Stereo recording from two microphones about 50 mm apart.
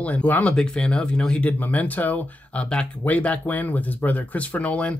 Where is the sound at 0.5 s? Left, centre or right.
Centre.